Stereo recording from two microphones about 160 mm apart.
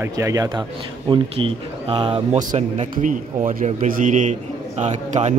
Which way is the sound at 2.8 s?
50° right (ahead or behind).